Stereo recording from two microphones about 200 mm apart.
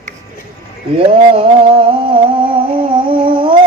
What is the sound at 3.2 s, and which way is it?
Humming, 25° right (ahead or behind).